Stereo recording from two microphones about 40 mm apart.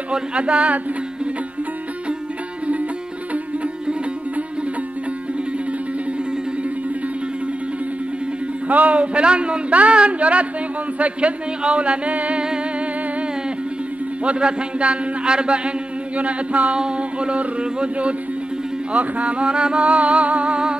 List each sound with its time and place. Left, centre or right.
0.1 s a man's voice: right
8.6 s a man's voice: right
14.2 s a man's voice: right
16.2 s a man's voice: right
19.8 s humming: right